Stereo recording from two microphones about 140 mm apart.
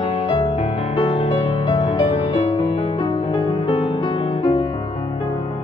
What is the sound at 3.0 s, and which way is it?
Music, 25° left (ahead or behind).